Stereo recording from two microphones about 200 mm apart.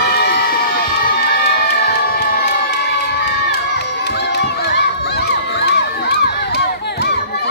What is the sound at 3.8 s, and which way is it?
Crowd, 55° left (ahead or behind).